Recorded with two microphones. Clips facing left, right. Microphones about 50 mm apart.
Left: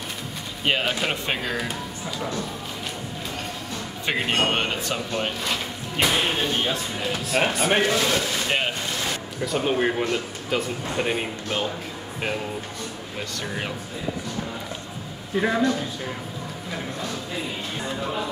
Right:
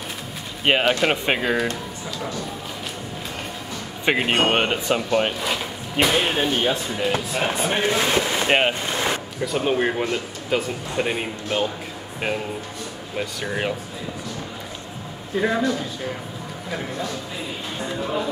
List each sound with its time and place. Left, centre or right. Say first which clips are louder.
0.7 s speech: right 5 dB; right
1.7 s speech: right 1 dB; centre
4.0 s speech: right 4 dB; right
5.4 s speech: right 2 dB; centre
7.3 s speech: left 5 dB; left
7.8 s speech: right 2 dB; right
9.4 s a man's voice: right 1 dB; centre
13.2 s speech: right 5 dB; centre
15.3 s a man's voice: even; centre